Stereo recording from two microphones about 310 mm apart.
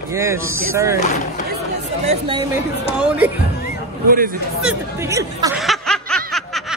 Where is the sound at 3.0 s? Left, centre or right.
Centre.